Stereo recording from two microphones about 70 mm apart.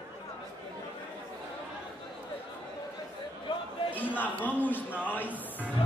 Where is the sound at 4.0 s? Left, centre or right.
Left.